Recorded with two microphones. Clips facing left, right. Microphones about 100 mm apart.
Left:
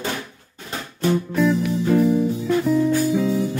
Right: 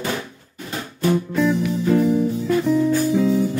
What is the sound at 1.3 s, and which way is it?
Music, centre (ahead or behind).